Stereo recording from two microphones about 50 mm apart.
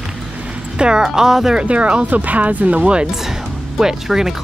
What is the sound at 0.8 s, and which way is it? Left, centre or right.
Speech, centre.